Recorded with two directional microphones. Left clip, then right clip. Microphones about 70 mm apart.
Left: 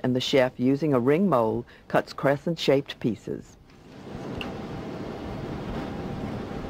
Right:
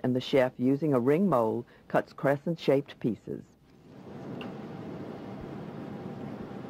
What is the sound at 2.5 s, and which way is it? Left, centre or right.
Speech, right.